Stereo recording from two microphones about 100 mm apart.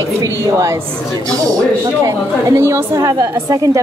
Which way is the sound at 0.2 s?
35° right (ahead or behind).